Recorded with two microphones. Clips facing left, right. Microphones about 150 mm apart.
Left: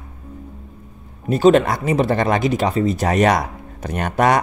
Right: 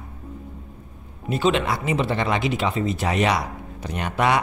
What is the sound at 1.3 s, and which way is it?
Speech, 45° left (ahead or behind).